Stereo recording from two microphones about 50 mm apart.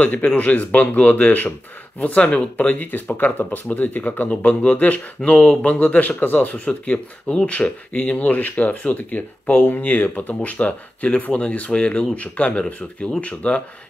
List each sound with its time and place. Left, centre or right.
0.0 s speech: left
5.2 s speech: centre